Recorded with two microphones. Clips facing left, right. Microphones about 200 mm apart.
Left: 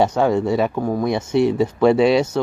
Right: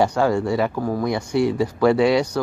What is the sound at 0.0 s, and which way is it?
Speech, 20° left (ahead or behind).